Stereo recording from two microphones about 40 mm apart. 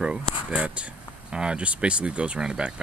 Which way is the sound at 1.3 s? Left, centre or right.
Right.